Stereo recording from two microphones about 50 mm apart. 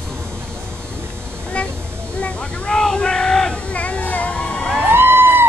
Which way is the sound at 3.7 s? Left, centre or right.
Left.